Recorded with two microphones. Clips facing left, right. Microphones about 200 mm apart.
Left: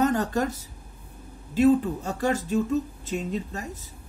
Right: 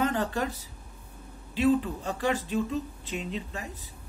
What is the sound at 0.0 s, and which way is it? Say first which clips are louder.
Speech: left 4 dB; 45° left (ahead or behind).